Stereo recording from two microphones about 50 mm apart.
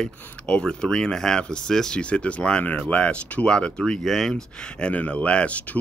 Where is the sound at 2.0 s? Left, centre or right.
Left.